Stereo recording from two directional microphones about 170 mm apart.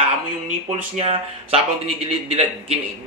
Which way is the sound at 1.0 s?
35° right (ahead or behind).